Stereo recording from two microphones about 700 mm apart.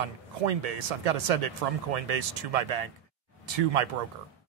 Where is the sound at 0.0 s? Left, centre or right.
Right.